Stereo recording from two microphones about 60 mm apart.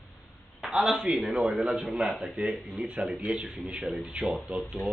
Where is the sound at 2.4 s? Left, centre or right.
Right.